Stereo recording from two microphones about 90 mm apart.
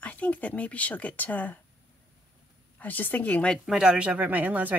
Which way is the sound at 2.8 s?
20° left (ahead or behind).